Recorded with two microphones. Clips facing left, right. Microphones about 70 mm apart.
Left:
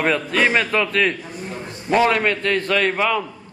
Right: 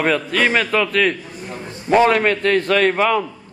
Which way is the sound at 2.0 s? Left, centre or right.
Right.